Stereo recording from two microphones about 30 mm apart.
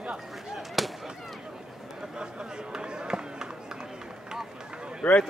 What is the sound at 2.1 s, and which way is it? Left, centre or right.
Run, right.